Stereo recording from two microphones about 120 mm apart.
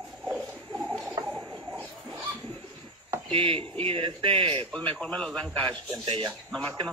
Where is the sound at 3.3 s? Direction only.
50° right (ahead or behind).